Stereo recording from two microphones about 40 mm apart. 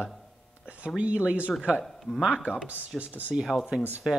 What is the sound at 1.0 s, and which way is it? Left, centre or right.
Speech, right.